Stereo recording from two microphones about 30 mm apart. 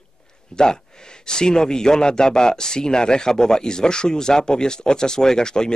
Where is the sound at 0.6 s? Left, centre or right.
Left.